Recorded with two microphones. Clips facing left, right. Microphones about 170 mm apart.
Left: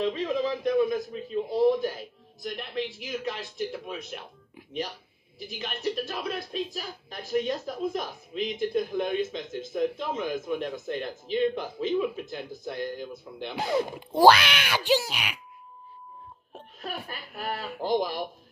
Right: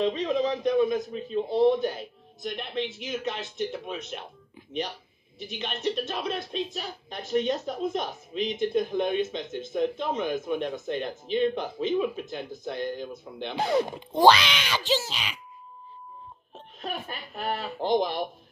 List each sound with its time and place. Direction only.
0.0 s speech: 20° right (ahead or behind)
5.4 s speech: 25° right (ahead or behind)
13.9 s speech: 10° left (ahead or behind)
16.8 s speech: 20° right (ahead or behind)